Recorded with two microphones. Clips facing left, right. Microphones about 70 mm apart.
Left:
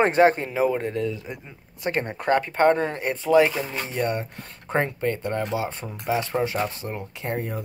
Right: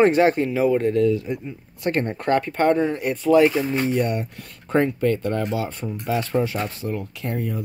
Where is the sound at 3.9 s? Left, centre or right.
Left.